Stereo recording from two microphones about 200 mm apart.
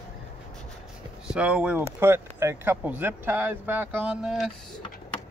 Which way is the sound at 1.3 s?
5° right (ahead or behind).